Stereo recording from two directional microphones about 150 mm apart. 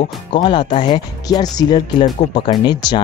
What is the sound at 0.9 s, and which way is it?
Speech, 25° left (ahead or behind).